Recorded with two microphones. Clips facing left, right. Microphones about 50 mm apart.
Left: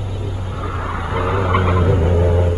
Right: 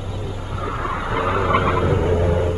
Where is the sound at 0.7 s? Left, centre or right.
Centre.